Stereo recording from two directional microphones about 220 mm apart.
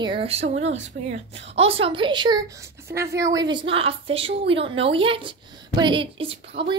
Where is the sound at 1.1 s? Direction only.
55° right (ahead or behind).